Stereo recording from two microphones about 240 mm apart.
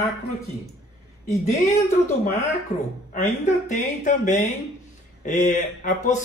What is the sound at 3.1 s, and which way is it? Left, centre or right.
Speech, left.